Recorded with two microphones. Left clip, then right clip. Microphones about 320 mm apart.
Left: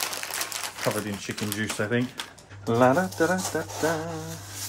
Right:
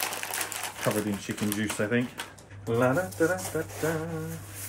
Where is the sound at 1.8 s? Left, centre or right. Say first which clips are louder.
Left 1 dB; left.